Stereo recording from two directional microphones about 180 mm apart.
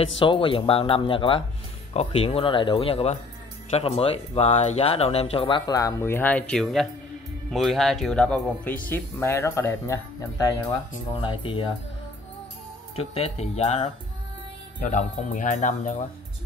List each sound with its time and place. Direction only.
0.2 s speech: 30° left (ahead or behind)
11.1 s speech: 25° left (ahead or behind)
12.9 s speech: 35° left (ahead or behind)